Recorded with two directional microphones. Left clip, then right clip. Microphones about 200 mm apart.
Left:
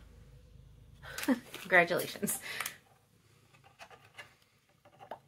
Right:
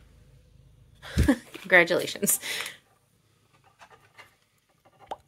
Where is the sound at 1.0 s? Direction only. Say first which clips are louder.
Right 8 dB; 60° right (ahead or behind).